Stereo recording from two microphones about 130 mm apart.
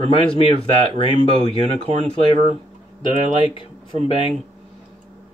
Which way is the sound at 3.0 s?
40° left (ahead or behind).